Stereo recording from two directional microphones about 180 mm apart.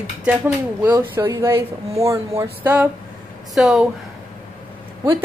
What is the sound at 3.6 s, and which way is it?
Speech, centre (ahead or behind).